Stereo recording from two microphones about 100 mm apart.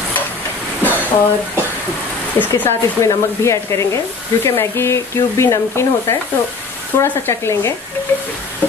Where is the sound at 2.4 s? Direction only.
25° left (ahead or behind).